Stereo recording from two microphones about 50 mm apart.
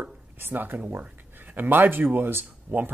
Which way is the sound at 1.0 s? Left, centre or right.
Right.